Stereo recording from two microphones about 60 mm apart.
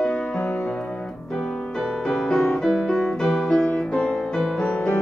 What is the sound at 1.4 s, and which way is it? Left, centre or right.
Music, centre.